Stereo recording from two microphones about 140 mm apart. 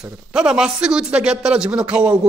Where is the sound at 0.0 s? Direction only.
5° right (ahead or behind).